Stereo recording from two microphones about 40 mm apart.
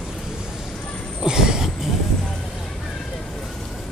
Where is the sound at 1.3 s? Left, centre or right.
Centre.